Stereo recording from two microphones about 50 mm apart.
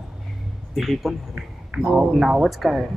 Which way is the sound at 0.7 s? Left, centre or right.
Centre.